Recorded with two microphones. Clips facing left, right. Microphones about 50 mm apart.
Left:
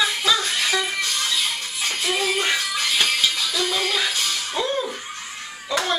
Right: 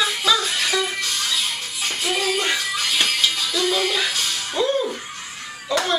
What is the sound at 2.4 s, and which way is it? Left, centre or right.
Music, centre.